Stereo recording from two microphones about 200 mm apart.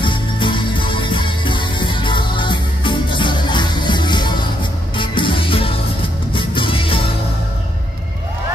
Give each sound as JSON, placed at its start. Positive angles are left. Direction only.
{"t": 0.0, "sound": "music", "side_deg": 25}